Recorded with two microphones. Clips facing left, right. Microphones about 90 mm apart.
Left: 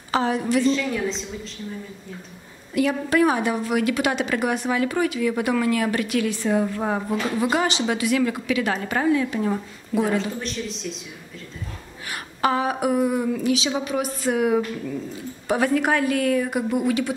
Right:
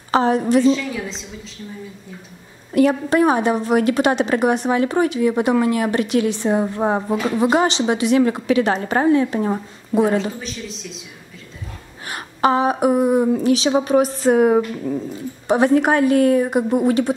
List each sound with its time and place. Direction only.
0.1 s a woman's voice: 35° right (ahead or behind)
0.7 s speech: centre (ahead or behind)
2.7 s a woman's voice: 40° right (ahead or behind)
3.1 s a woman's voice: 30° right (ahead or behind)
10.4 s speech: centre (ahead or behind)
12.1 s a woman's voice: 25° right (ahead or behind)
15.4 s a woman's voice: 25° right (ahead or behind)